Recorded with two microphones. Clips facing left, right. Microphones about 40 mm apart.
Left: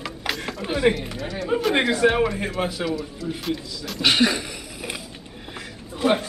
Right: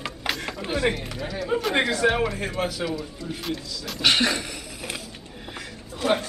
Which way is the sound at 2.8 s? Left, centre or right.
Centre.